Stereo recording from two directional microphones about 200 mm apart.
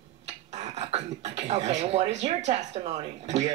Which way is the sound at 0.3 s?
35° right (ahead or behind).